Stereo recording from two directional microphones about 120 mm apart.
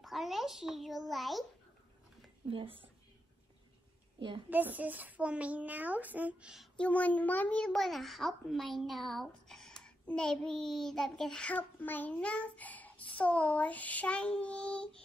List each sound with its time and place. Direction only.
0.0 s a child's voice: centre (ahead or behind)
2.5 s speech: 45° right (ahead or behind)
4.5 s a woman's voice: 15° right (ahead or behind)
6.8 s a child's voice: 10° left (ahead or behind)